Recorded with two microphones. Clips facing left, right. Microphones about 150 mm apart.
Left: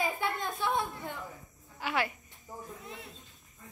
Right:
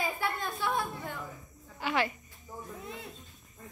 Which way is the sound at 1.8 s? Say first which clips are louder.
Right 2 dB; 10° left (ahead or behind).